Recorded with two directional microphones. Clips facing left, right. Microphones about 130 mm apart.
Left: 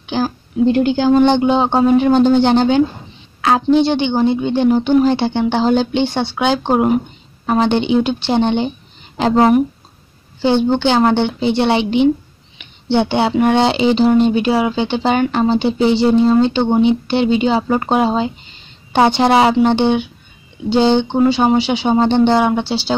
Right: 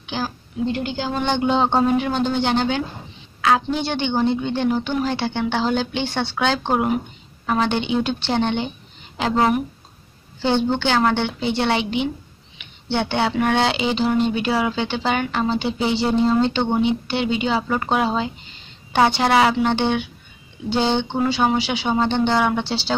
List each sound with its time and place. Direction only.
0.7 s speech: 50° left (ahead or behind)
1.2 s speech: 25° left (ahead or behind)
1.5 s speech: 10° left (ahead or behind)
2.0 s speech: 35° left (ahead or behind)
3.3 s a sound: 35° left (ahead or behind)
3.7 s speech: 20° left (ahead or behind)
4.1 s speech: 10° left (ahead or behind); by 6.0 s 25° left (ahead or behind)
6.0 s speech: 15° left (ahead or behind)
9.2 s speech: 35° left (ahead or behind)
10.4 s speech: 15° left (ahead or behind)
22.7 s speech: 10° left (ahead or behind)